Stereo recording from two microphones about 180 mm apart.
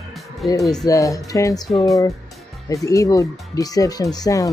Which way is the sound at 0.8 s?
20° left (ahead or behind).